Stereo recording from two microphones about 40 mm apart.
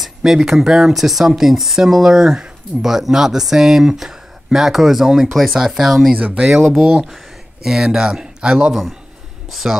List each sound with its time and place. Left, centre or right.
0.0 s speech: centre
6.1 s speech: right
6.4 s speech: centre
9.5 s speech: centre